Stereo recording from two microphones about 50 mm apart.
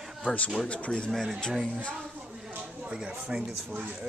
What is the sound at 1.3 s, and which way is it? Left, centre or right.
Speech, centre.